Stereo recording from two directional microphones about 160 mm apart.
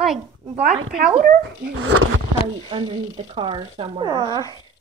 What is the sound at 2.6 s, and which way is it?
Speech, 30° right (ahead or behind).